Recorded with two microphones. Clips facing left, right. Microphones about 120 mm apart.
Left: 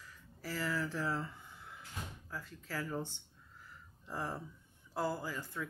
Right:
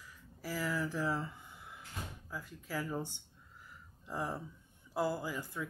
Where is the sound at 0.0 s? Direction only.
10° right (ahead or behind).